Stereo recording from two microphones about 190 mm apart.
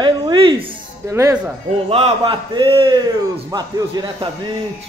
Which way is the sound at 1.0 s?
15° right (ahead or behind).